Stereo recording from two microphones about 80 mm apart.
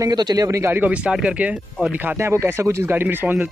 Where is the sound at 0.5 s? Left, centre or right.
Right.